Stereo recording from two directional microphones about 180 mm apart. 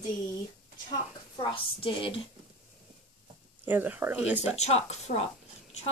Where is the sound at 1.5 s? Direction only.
30° left (ahead or behind).